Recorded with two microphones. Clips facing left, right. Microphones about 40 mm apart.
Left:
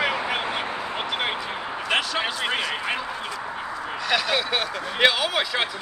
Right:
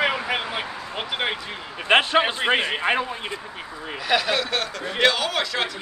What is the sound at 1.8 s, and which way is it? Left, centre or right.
A man's voice, right.